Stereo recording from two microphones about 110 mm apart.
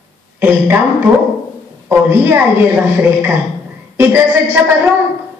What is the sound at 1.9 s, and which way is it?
Speech, 20° right (ahead or behind).